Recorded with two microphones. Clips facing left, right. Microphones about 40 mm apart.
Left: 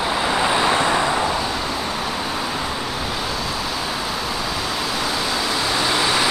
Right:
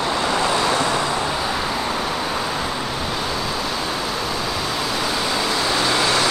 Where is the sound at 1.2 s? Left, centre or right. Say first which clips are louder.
Even; centre.